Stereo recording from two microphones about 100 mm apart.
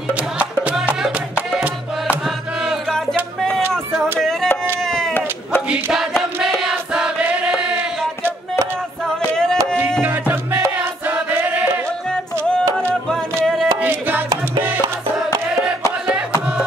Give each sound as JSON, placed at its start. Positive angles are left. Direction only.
{"t": 0.1, "sound": "music", "side_deg": -15}
{"t": 2.2, "sound": "music", "side_deg": 0}
{"t": 4.2, "sound": "music", "side_deg": 5}
{"t": 4.8, "sound": "a sound", "side_deg": 5}
{"t": 6.4, "sound": "choir", "side_deg": 0}
{"t": 9.2, "sound": "music", "side_deg": 10}
{"t": 10.0, "sound": "music", "side_deg": -15}
{"t": 11.1, "sound": "choir", "side_deg": -15}
{"t": 12.7, "sound": "music", "side_deg": 5}
{"t": 13.7, "sound": "music", "side_deg": -20}